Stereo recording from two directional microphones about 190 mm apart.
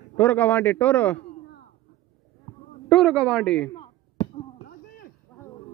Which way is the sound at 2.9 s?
Centre (ahead or behind).